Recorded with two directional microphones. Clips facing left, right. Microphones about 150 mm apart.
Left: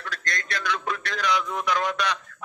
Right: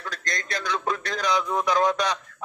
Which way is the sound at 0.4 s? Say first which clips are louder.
Right 1 dB; 40° right (ahead or behind).